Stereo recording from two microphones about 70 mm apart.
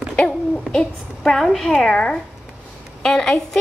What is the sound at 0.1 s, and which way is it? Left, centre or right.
A child's voice, centre.